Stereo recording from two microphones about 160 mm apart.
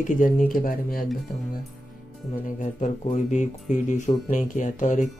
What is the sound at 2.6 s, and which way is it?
Speech, 50° left (ahead or behind).